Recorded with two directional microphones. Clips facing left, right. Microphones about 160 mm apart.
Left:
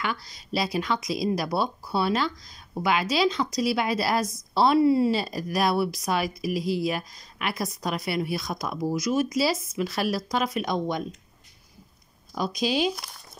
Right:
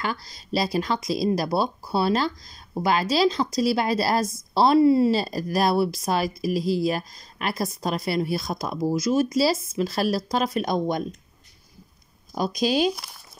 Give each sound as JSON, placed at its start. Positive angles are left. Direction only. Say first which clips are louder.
{"t": 0.0, "sound": "speech", "louder": "right 1 dB", "side_deg": -35}
{"t": 12.4, "sound": "speech", "louder": "right 3 dB", "side_deg": -40}